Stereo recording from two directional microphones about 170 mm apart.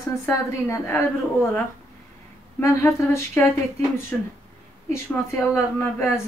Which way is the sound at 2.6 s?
15° left (ahead or behind).